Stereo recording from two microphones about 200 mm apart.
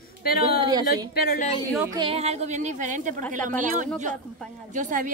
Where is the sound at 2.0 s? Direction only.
30° right (ahead or behind).